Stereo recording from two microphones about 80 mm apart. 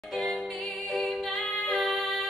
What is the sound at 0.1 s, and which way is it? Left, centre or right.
Singing, centre.